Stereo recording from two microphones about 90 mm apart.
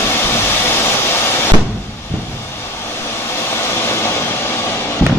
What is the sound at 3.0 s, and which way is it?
Vehicle, 30° left (ahead or behind).